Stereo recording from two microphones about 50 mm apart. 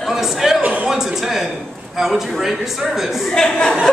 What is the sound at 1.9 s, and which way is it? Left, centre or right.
A man's voice, centre.